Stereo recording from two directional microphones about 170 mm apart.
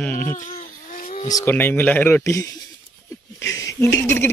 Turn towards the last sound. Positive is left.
turn(degrees=15)  # may be behind; listen again after turning